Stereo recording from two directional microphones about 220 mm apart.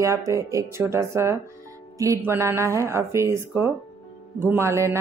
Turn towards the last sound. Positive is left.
turn(degrees=-10)  # may be behind; listen again after turning